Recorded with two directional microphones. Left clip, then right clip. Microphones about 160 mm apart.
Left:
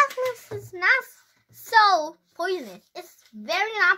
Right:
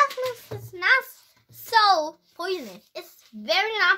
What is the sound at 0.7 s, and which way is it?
A child's voice, 30° left (ahead or behind).